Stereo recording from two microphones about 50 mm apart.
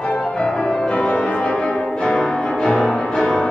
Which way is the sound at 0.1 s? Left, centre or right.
Centre.